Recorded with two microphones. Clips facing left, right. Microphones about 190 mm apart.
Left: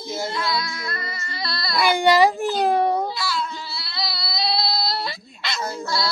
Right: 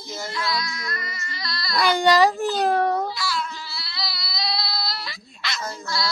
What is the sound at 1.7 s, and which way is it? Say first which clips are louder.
Speech: left 1 dB; 10° left (ahead or behind).